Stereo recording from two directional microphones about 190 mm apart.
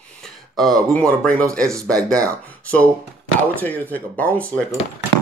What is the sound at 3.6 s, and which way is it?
Speech, 10° left (ahead or behind).